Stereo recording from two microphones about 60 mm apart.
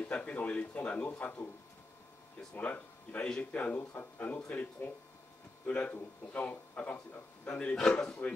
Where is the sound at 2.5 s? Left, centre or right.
Left.